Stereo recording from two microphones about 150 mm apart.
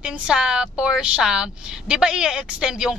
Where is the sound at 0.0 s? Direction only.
5° right (ahead or behind).